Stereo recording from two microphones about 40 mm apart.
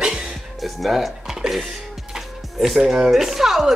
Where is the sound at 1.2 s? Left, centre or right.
Centre.